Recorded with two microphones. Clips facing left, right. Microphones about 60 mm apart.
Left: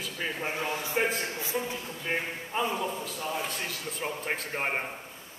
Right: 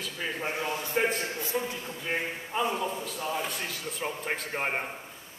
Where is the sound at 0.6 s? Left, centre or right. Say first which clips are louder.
Even; left.